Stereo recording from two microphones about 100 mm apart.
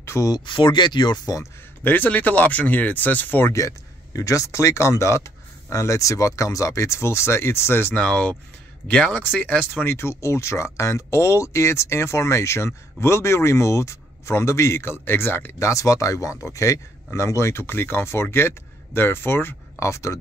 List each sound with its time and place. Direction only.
0.0 s a sound: 25° left (ahead or behind)
0.3 s speech: 50° left (ahead or behind); by 1.5 s 35° left (ahead or behind)
1.9 s speech: 15° left (ahead or behind)
3.5 s speech: 35° left (ahead or behind)
7.9 s speech: 10° left (ahead or behind)
9.8 s speech: 25° left (ahead or behind)